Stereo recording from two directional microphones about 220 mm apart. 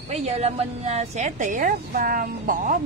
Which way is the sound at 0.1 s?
30° right (ahead or behind).